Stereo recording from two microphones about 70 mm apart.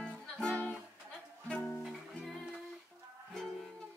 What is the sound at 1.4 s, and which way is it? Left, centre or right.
Music, centre.